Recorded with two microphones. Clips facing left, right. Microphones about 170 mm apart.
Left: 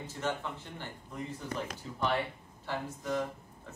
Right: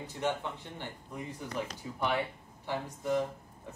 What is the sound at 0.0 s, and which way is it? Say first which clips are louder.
Speech: right 2 dB; 15° right (ahead or behind).